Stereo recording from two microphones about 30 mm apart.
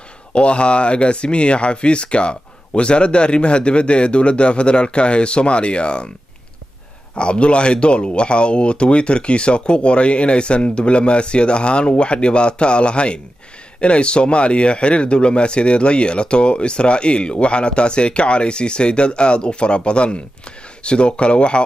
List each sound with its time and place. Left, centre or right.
0.3 s speech: left
7.2 s speech: left